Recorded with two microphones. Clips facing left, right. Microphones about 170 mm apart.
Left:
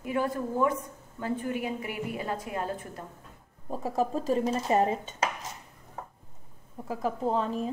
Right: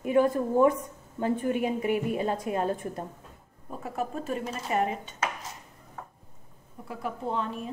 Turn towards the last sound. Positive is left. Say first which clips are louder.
# left 3 dB
turn(degrees=35)  # may be behind; listen again after turning